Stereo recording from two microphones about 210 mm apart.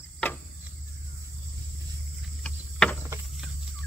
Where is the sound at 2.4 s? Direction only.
5° left (ahead or behind).